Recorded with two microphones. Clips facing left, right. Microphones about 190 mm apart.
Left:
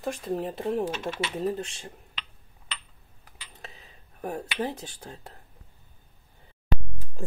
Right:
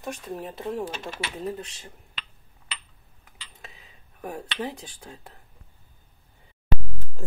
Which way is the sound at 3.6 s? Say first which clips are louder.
Left 3 dB; 30° left (ahead or behind).